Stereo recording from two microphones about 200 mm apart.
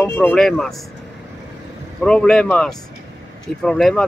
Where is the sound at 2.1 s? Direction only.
5° left (ahead or behind).